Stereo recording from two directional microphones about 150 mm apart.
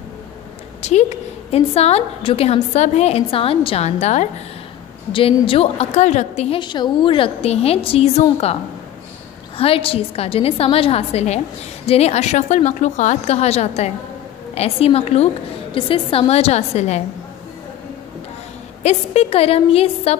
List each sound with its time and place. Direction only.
0.8 s a woman's voice: 50° left (ahead or behind)
5.1 s a woman's voice: 40° left (ahead or behind)
6.6 s a woman's voice: 30° left (ahead or behind)
9.6 s a woman's voice: 40° left (ahead or behind)
18.8 s a woman's voice: 45° left (ahead or behind)